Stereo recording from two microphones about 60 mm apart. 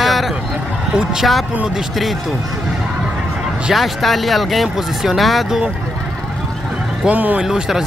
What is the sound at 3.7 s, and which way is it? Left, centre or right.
Speech, centre.